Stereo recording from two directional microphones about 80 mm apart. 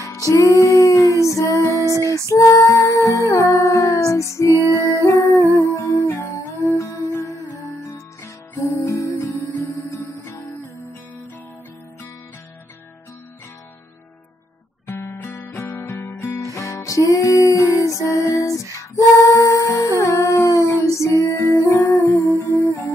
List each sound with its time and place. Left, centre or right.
0.0 s music: left
14.9 s guitar: left
15.5 s music: left
15.8 s music: left
16.4 s music: left
22.4 s humming: left